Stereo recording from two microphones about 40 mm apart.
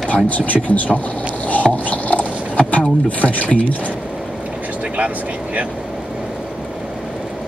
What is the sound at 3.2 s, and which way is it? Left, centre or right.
Speech, left.